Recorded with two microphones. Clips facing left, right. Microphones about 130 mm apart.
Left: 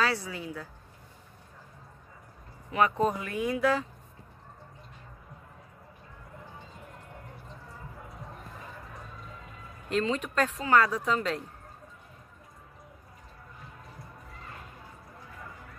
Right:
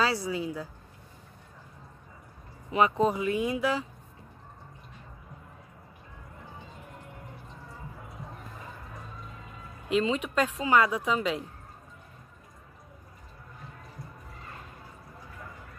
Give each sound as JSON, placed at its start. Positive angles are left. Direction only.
{"t": 0.3, "sound": "speech", "side_deg": -20}
{"t": 2.7, "sound": "speech", "side_deg": -20}
{"t": 9.8, "sound": "speech", "side_deg": -5}